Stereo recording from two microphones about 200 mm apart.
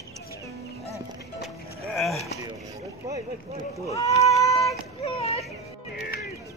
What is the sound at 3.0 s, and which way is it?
Speech, 15° right (ahead or behind).